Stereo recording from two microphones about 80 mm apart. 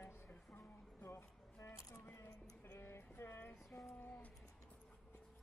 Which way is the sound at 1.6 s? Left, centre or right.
Left.